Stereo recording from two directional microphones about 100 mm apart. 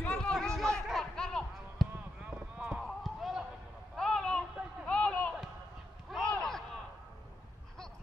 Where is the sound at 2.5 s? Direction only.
5° right (ahead or behind).